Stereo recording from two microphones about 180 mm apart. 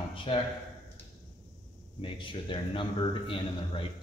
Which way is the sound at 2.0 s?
30° left (ahead or behind).